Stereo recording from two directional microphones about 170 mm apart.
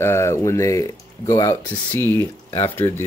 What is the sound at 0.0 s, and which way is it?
Speech, 15° left (ahead or behind).